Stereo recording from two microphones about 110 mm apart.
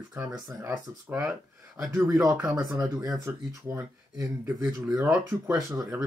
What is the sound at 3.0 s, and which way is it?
Speech, 25° right (ahead or behind).